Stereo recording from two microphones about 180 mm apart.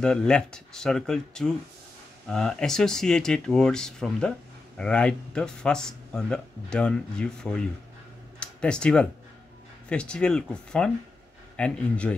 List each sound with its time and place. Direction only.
0.0 s speech: 5° left (ahead or behind)
8.4 s a sound: 5° left (ahead or behind)
9.8 s speech: 5° left (ahead or behind)